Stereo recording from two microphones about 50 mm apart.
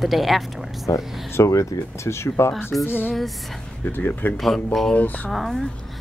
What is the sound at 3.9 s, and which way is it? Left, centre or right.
Speech, left.